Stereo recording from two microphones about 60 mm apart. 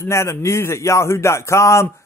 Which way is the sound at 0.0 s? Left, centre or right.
Left.